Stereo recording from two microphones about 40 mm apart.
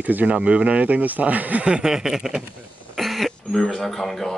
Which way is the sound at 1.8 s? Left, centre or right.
Centre.